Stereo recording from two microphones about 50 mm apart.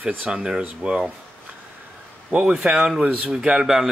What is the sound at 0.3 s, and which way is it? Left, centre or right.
Speech, centre.